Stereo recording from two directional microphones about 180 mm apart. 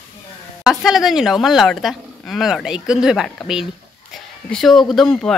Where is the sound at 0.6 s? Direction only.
Centre (ahead or behind).